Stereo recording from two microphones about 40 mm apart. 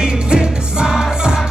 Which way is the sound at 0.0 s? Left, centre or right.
Right.